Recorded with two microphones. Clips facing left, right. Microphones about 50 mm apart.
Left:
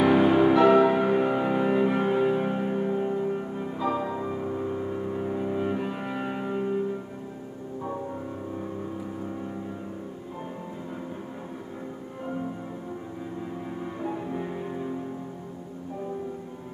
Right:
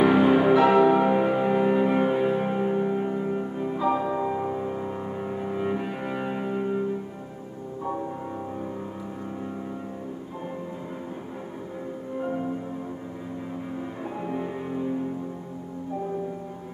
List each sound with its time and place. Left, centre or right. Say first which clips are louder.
0.0 s music: right 1 dB; centre
3.9 s music: right 4 dB; right
5.1 s cello: left 3 dB; centre